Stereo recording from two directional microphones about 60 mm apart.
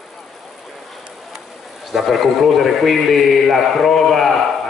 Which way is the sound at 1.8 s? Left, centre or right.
Centre.